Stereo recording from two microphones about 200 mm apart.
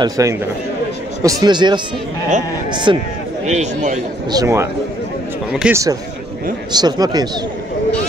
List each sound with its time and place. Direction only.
0.0 s a man's voice: 15° right (ahead or behind)
3.4 s a man's voice: 35° right (ahead or behind)
4.3 s a man's voice: 15° right (ahead or behind)
5.5 s speech: 5° right (ahead or behind)
6.7 s speech: 20° right (ahead or behind)